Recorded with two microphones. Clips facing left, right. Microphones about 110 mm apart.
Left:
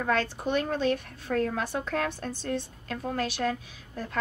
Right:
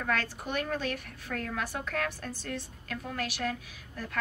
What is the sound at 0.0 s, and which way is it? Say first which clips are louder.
A woman's voice: left 5 dB; 25° left (ahead or behind).